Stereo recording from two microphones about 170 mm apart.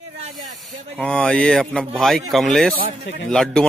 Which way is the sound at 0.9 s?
5° left (ahead or behind).